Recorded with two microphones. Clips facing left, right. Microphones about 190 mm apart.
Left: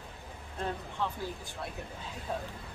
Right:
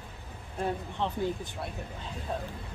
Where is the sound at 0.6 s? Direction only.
20° right (ahead or behind).